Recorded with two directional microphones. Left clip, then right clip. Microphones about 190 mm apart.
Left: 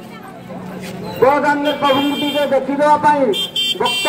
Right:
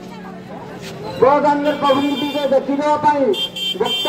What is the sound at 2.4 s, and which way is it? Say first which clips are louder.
Speech: left 2 dB; 25° left (ahead or behind).